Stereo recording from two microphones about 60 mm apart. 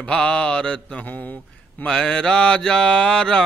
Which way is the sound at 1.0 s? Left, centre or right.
Left.